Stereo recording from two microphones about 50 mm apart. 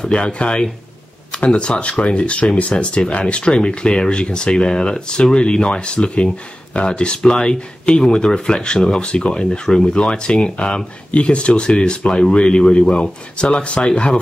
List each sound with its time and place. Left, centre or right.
0.0 s speech: left